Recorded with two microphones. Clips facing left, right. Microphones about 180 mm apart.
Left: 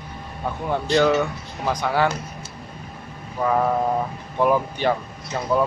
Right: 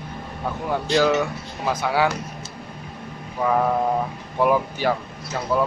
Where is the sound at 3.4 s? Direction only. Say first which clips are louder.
Even; 10° right (ahead or behind).